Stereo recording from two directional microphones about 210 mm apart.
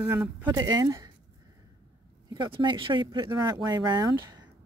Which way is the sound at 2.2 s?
20° right (ahead or behind).